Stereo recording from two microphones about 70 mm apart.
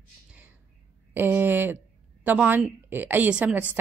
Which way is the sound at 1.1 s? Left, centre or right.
Right.